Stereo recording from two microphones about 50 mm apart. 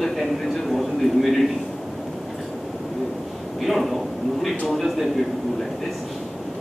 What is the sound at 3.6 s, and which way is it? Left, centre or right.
A man's voice, centre.